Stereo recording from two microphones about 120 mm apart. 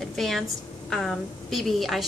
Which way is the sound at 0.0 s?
Centre (ahead or behind).